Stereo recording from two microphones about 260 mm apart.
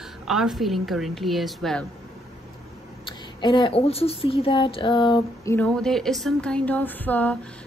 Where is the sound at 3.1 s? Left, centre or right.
Centre.